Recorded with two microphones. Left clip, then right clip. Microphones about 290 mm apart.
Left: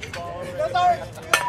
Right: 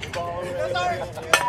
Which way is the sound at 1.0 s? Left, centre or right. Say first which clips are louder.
Right 1 dB; right.